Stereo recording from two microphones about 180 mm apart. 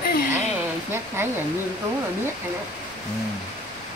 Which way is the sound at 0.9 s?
15° right (ahead or behind).